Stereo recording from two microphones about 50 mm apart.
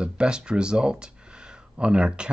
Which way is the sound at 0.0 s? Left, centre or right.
Centre.